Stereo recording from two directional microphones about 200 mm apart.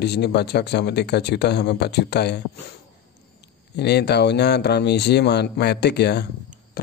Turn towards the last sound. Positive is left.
turn(degrees=55)  # may be behind; listen again after turning